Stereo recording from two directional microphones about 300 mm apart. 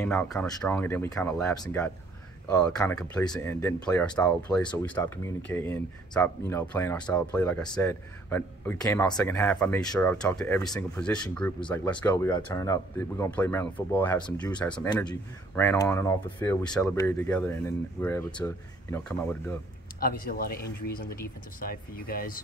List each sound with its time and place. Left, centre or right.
0.0 s speech: centre
20.0 s speech: left